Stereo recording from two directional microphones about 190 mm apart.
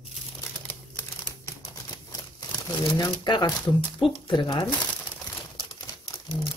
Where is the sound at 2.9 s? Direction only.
20° left (ahead or behind).